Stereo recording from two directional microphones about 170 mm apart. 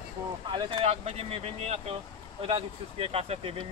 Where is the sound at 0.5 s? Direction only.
30° right (ahead or behind).